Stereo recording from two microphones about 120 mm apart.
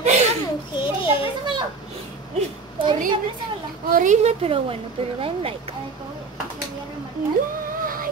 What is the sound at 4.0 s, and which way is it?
A woman's voice, 80° right.